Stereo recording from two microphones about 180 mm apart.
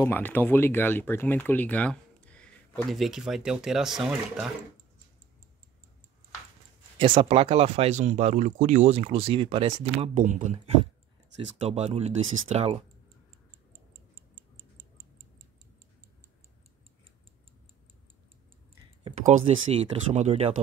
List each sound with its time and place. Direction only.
0.0 s speech: 10° left (ahead or behind)
7.0 s speech: 30° right (ahead or behind); by 10.6 s 45° right (ahead or behind)
11.6 s speech: 35° right (ahead or behind)
19.5 s speech: 35° right (ahead or behind)